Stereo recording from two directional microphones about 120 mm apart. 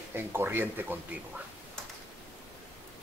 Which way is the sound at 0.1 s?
20° right (ahead or behind).